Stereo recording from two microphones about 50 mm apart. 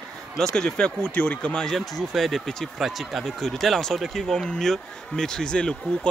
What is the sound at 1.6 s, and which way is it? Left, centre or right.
Speech, centre.